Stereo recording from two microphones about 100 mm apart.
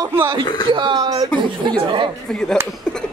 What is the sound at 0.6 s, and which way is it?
Speech, 50° right (ahead or behind).